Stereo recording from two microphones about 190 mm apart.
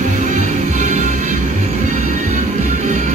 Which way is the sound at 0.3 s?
40° right (ahead or behind).